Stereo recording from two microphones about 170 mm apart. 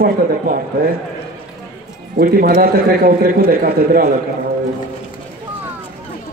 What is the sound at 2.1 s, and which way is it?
A man's voice, 65° right (ahead or behind).